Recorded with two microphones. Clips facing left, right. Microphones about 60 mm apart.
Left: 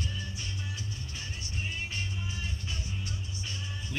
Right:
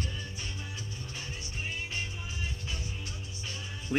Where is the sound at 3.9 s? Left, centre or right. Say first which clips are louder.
Right 8 dB; right.